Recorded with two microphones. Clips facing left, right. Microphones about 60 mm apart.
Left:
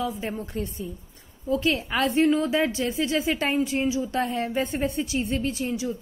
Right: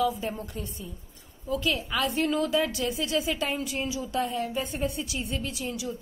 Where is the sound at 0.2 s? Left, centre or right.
Left.